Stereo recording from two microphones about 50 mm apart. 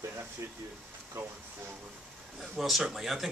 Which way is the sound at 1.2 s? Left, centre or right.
Right.